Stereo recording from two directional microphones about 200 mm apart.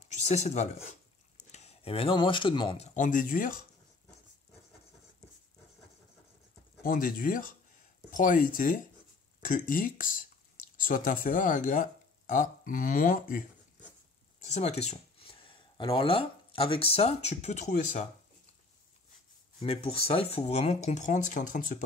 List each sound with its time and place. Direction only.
0.0 s speech: 35° left (ahead or behind)
2.9 s speech: 40° left (ahead or behind)
6.8 s speech: 45° left (ahead or behind)
19.6 s speech: 30° left (ahead or behind)